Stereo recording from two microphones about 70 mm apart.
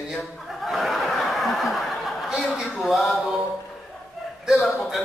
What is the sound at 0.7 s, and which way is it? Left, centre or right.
Speech, centre.